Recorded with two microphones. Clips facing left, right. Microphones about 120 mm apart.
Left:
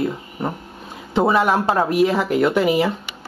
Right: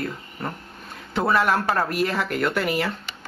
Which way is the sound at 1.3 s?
Centre (ahead or behind).